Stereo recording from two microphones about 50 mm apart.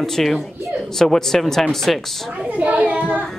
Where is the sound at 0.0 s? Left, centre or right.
Centre.